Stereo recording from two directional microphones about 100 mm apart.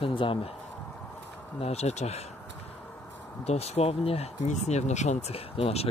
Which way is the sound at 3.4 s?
90° left.